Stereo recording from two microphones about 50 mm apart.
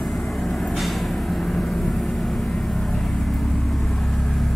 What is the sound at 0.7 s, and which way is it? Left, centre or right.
Vehicle, centre.